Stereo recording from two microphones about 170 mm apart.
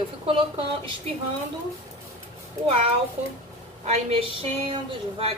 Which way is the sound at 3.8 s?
35° right (ahead or behind).